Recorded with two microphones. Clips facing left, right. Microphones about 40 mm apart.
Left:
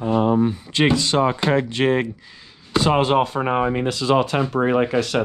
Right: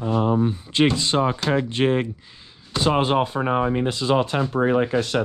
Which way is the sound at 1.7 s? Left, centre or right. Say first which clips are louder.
Left 1 dB; left.